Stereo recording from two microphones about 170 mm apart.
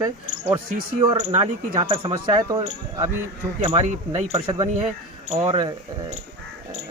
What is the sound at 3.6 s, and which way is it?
Speech, 40° right (ahead or behind).